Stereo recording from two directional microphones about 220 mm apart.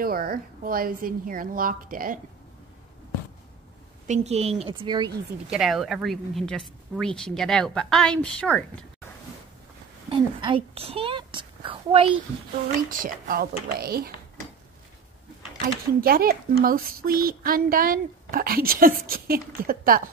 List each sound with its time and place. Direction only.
0.0 s speech: 40° right (ahead or behind)
4.1 s a woman's voice: 30° right (ahead or behind)
5.5 s speech: centre (ahead or behind)
10.0 s a child's voice: 25° right (ahead or behind)
12.9 s speech: 40° right (ahead or behind)
16.0 s speech: 40° right (ahead or behind)